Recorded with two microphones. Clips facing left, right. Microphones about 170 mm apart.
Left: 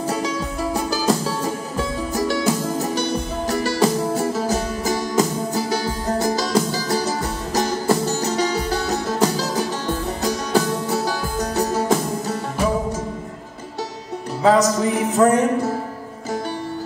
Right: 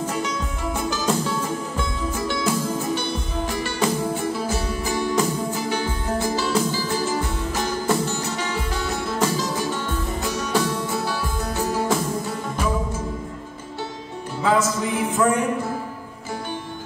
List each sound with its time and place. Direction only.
0.7 s music: 35° left (ahead or behind)
14.4 s music: 40° left (ahead or behind)